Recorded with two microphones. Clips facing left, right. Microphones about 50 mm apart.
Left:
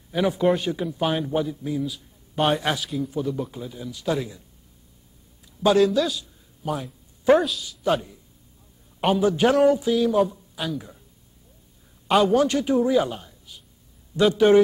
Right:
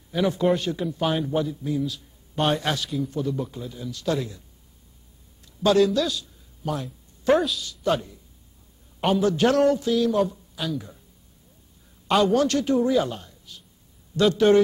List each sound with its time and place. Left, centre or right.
0.1 s a man's voice: centre
5.8 s a man's voice: centre
12.1 s a man's voice: centre